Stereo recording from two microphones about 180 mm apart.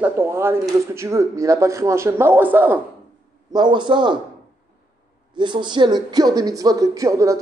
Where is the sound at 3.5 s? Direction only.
25° right (ahead or behind).